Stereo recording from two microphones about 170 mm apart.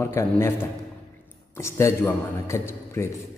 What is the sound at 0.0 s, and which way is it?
Speech, 15° left (ahead or behind).